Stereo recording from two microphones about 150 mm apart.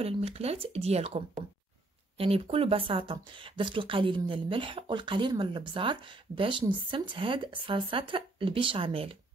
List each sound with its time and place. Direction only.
0.0 s speech: 40° right (ahead or behind)